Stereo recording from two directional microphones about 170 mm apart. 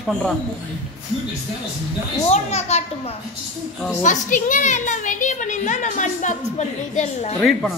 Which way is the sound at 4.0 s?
50° left (ahead or behind).